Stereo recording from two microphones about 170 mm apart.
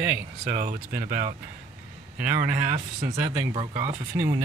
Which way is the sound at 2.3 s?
50° right (ahead or behind).